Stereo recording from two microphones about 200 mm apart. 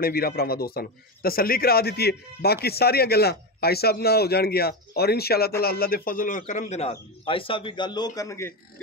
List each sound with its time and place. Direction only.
0.0 s a man's voice: 50° left (ahead or behind); by 8.5 s 15° left (ahead or behind)